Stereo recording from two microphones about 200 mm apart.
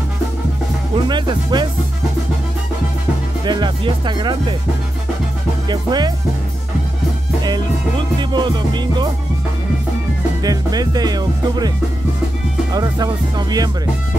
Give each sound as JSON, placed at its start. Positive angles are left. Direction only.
{"t": 1.0, "sound": "speech", "side_deg": -20}
{"t": 3.4, "sound": "speech", "side_deg": -20}
{"t": 5.7, "sound": "speech", "side_deg": -20}
{"t": 8.2, "sound": "speech", "side_deg": -20}
{"t": 10.4, "sound": "speech", "side_deg": -20}
{"t": 12.7, "sound": "speech", "side_deg": -20}